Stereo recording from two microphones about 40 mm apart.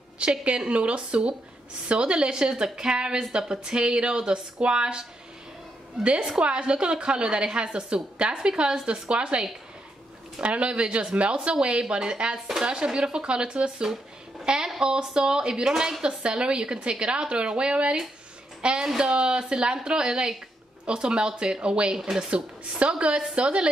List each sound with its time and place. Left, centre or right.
0.2 s a woman's voice: right
6.0 s a woman's voice: right
16.0 s a woman's voice: right
21.9 s speech: centre
22.3 s a woman's voice: right